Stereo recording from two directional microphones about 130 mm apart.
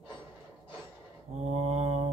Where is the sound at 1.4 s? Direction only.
55° right (ahead or behind).